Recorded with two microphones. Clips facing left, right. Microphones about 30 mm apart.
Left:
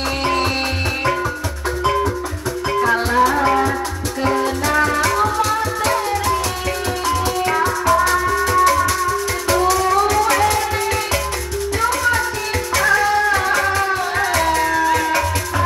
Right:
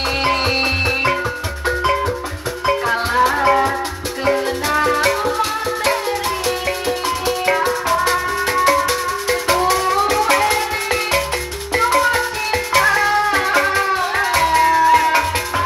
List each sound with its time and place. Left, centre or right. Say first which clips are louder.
0.0 s music: right 1 dB; right